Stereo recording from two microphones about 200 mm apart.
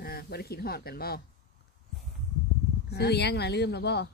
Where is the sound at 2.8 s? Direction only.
55° left (ahead or behind).